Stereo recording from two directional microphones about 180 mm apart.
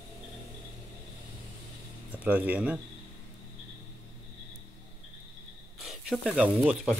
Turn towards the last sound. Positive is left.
turn(degrees=-5)  # may be behind; listen again after turning